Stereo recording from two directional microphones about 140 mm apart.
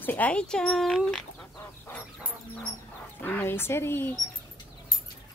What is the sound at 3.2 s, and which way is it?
Speech, 15° left (ahead or behind).